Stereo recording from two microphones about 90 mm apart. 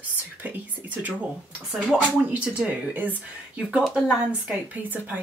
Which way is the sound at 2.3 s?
15° right (ahead or behind).